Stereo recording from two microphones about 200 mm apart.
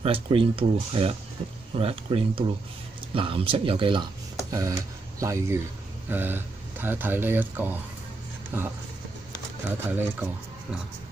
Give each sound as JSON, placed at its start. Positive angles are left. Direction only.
{"t": 0.0, "sound": "speech", "side_deg": -30}
{"t": 9.8, "sound": "speech", "side_deg": -10}